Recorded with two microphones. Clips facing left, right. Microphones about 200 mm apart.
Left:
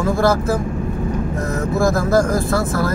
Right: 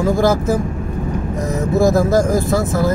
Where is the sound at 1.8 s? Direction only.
20° right (ahead or behind).